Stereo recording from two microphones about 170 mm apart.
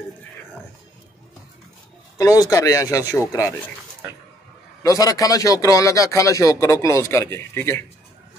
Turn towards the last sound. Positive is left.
turn(degrees=15)  # may be behind; listen again after turning